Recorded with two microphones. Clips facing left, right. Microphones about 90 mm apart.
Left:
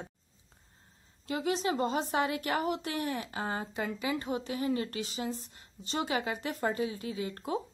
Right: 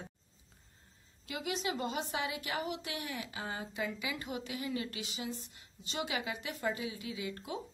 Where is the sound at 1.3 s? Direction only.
35° left (ahead or behind).